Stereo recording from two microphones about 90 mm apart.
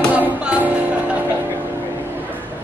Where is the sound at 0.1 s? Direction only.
15° right (ahead or behind).